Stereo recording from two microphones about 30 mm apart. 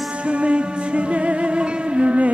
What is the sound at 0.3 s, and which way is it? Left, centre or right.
Music, right.